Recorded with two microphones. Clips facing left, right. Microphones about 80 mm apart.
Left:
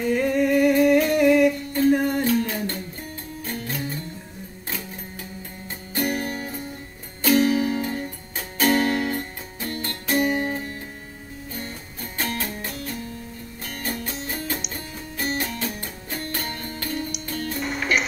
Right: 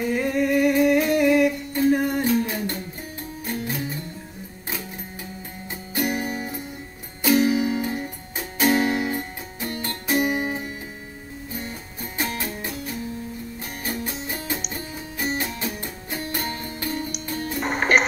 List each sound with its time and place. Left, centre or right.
0.0 s humming: centre
3.4 s music: centre
5.9 s music: centre
17.6 s music: right